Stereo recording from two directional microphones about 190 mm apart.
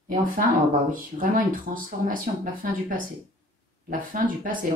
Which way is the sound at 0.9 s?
50° right (ahead or behind).